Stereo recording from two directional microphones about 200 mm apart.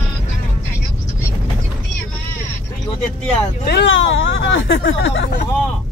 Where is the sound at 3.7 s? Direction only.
70° left (ahead or behind).